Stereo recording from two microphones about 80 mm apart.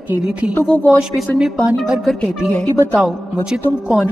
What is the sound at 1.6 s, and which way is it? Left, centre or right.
Speech, centre.